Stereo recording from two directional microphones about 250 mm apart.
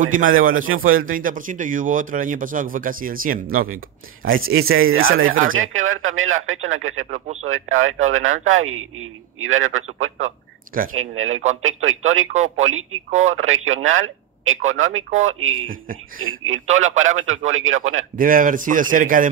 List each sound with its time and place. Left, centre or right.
0.0 s speech: right
4.6 s a man's voice: right
7.1 s speech: right
7.4 s a man's voice: right
10.9 s a man's voice: right
18.1 s speech: right